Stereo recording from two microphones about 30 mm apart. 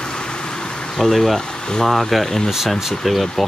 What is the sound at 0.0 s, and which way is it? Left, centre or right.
Bee, left.